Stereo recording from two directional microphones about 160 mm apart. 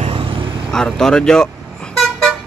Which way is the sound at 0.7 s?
5° left (ahead or behind).